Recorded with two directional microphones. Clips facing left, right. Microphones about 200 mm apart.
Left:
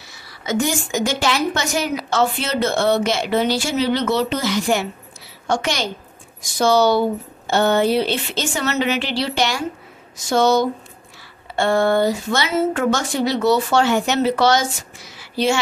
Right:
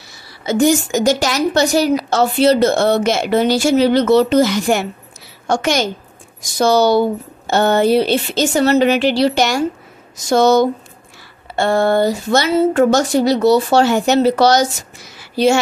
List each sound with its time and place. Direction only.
0.5 s a woman's voice: 40° right (ahead or behind)